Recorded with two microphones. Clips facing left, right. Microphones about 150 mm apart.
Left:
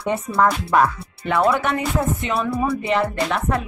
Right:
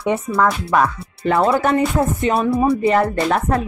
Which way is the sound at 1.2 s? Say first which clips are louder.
Right 3 dB; 35° right (ahead or behind).